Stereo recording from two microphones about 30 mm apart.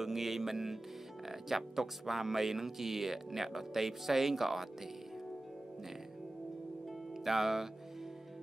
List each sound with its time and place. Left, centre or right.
0.0 s music: centre
1.3 s speech: centre
7.2 s speech: centre